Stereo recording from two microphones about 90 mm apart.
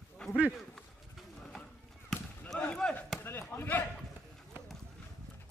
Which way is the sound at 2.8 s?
10° left (ahead or behind).